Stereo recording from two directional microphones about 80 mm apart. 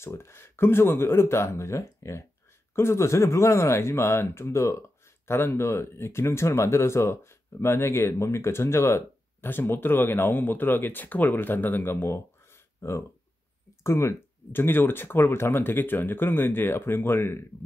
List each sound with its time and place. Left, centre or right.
0.0 s speech: left